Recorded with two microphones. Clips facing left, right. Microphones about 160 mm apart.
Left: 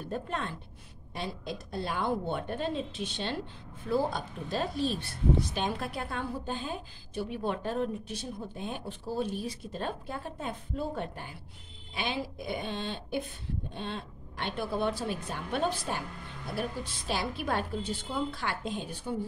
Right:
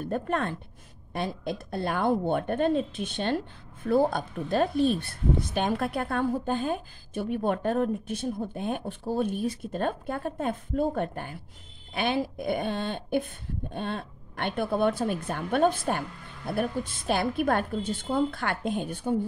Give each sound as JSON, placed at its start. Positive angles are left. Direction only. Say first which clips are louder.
{"t": 0.0, "sound": "a woman's voice", "louder": "right 6 dB", "side_deg": -55}